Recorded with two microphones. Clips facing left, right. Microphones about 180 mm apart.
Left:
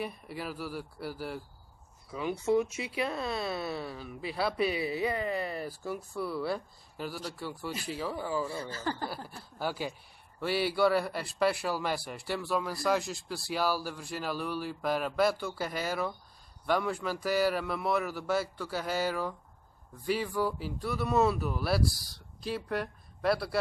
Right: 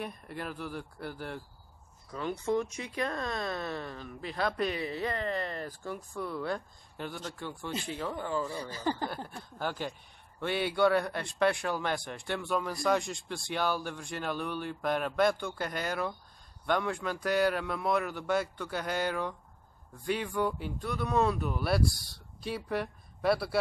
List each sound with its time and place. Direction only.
0.0 s speech: 5° left (ahead or behind)
8.5 s speech: 15° right (ahead or behind)
9.3 s speech: 5° left (ahead or behind)